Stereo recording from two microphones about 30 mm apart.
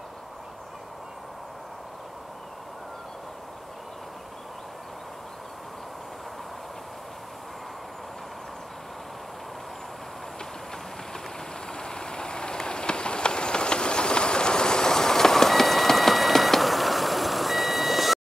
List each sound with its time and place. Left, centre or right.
11.7 s train: left; by 18.2 s centre